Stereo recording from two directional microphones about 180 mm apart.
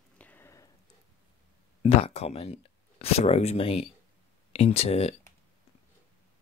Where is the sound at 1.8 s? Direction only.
35° left (ahead or behind).